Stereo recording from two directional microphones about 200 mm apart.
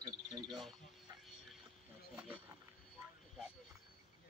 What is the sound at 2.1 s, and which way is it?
Cricket, 5° right (ahead or behind).